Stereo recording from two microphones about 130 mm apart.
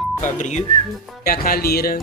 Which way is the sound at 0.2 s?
70° left (ahead or behind).